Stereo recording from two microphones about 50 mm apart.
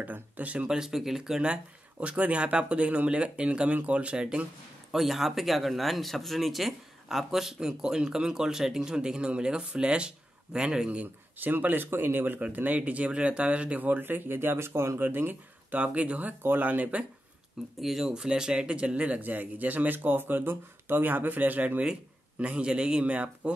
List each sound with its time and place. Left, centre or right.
0.0 s a man's voice: right
0.7 s speech: centre
4.9 s speech: centre
11.3 s speech: right
13.8 s speech: right
15.0 s a man's voice: right
17.7 s speech: centre
18.1 s a man's voice: centre; by 21.8 s right
22.4 s speech: right
23.0 s speech: right